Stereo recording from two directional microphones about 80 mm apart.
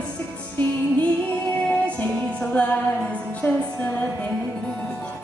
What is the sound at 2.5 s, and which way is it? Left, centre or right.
Music, centre.